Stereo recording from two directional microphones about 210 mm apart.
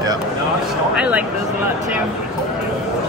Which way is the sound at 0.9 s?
5° right (ahead or behind).